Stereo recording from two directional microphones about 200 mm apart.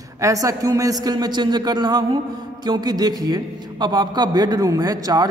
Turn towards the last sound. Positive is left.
turn(degrees=-20)  # may be behind; listen again after turning